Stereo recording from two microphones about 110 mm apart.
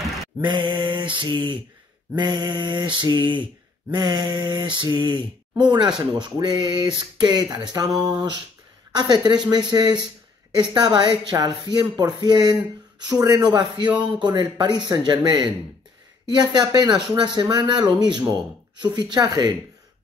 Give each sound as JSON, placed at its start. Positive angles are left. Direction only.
{"t": 0.4, "sound": "mantra", "side_deg": -45}
{"t": 6.3, "sound": "speech", "side_deg": -40}
{"t": 8.0, "sound": "mantra", "side_deg": -45}
{"t": 8.9, "sound": "a woman's voice", "side_deg": -40}
{"t": 14.9, "sound": "mantra", "side_deg": -40}
{"t": 16.3, "sound": "speech", "side_deg": -35}